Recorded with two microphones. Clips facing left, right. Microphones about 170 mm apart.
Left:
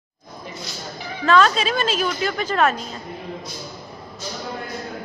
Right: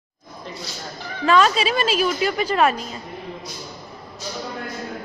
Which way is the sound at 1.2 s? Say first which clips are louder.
Even; 10° right (ahead or behind).